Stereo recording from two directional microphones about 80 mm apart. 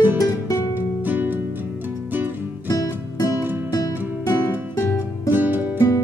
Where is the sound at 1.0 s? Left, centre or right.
Right.